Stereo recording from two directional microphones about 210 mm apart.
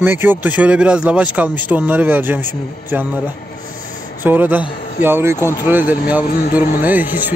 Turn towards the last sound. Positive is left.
turn(degrees=-10)  # may be behind; listen again after turning